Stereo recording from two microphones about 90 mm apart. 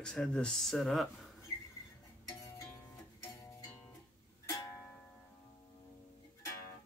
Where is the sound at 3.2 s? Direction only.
35° left (ahead or behind).